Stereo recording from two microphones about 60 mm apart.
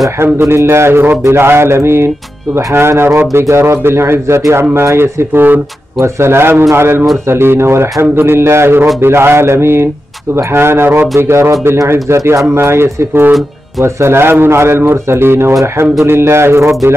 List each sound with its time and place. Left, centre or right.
0.2 s a man's voice: right
5.9 s a man's voice: right